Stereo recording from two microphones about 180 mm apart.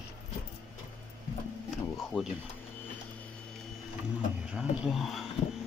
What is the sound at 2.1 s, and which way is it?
Speech, 30° left (ahead or behind).